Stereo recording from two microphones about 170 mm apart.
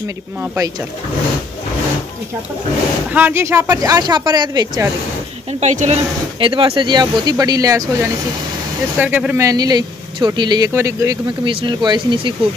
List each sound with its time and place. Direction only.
3.1 s speech: 10° right (ahead or behind)
5.5 s speech: 40° right (ahead or behind)
6.4 s speech: 30° right (ahead or behind)
8.9 s speech: 10° right (ahead or behind); by 12.4 s 30° right (ahead or behind)